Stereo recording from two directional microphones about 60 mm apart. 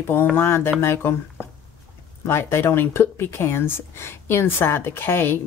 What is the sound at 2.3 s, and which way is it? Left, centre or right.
Speech, left.